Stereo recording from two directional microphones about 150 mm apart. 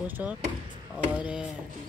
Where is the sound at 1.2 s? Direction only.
5° right (ahead or behind).